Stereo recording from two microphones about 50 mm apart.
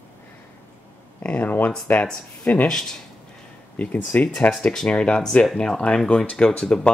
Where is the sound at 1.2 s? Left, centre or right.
Left.